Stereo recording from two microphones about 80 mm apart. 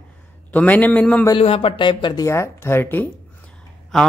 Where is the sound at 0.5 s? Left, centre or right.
Centre.